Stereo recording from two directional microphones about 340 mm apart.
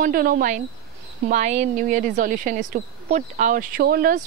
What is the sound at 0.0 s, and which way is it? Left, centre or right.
Speech, right.